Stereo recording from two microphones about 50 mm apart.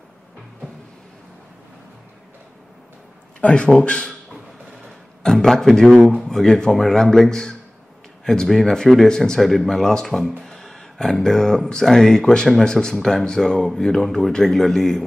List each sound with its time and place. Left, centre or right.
3.3 s a man's voice: left
5.2 s speech: centre